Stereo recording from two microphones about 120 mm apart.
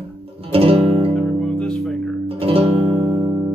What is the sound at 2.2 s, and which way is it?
Music, 50° right (ahead or behind).